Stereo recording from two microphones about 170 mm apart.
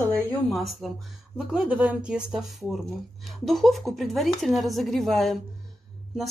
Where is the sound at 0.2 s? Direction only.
10° left (ahead or behind).